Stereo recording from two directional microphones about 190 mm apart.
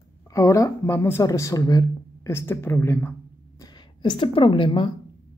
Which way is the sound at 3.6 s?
25° left (ahead or behind).